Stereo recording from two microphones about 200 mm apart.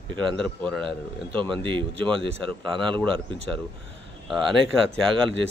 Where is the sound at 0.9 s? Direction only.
25° right (ahead or behind).